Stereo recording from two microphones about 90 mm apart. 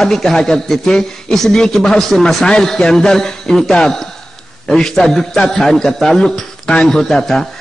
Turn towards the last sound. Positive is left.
turn(degrees=5)  # may be behind; listen again after turning